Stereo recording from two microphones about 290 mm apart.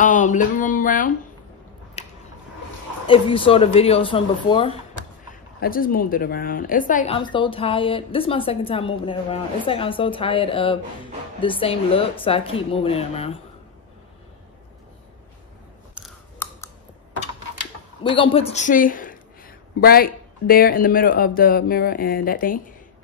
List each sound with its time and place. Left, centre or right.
0.0 s speech: left
2.0 s a sound: left
3.1 s speech: centre
5.3 s a woman's voice: left
15.9 s scissors: centre
18.0 s speech: centre